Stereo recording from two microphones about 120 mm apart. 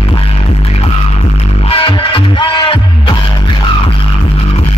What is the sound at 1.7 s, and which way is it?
Music, 50° left (ahead or behind).